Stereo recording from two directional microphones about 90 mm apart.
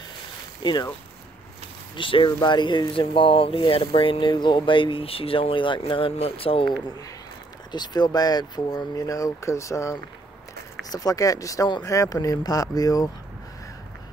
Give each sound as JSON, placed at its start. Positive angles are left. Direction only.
{"t": 0.6, "sound": "speech", "side_deg": 55}
{"t": 2.0, "sound": "speech", "side_deg": 70}
{"t": 7.7, "sound": "speech", "side_deg": 50}